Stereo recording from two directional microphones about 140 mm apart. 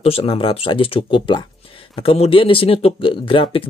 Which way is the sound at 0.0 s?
45° left (ahead or behind).